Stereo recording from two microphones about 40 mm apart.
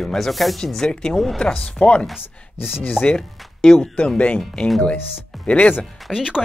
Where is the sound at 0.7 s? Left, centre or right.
Centre.